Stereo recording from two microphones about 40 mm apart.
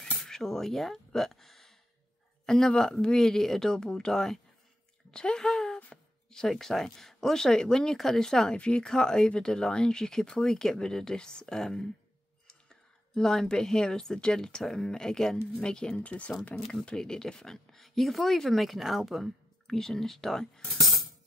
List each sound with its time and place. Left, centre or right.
0.2 s a sound: centre
2.4 s speech: centre
8.5 s speech: left
16.0 s speech: left
16.5 s speech: centre
19.7 s speech: centre